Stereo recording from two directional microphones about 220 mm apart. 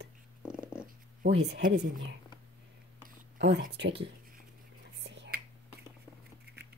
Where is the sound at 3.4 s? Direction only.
50° right (ahead or behind).